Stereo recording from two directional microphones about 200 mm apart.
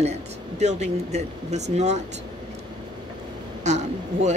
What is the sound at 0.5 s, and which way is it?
Speech, 35° right (ahead or behind).